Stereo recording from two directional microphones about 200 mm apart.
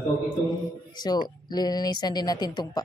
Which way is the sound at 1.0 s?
20° left (ahead or behind).